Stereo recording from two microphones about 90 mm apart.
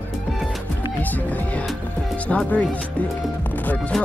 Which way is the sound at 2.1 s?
15° left (ahead or behind).